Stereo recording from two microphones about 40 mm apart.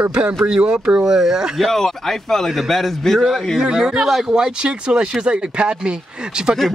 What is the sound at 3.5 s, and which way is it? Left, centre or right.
Speech, centre.